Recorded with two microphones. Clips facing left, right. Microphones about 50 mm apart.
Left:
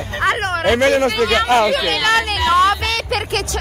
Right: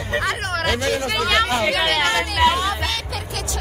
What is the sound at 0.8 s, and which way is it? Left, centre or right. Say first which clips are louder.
Speech: left 8 dB; left.